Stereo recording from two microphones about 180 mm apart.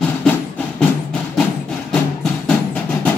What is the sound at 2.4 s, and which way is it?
Music, 10° left (ahead or behind).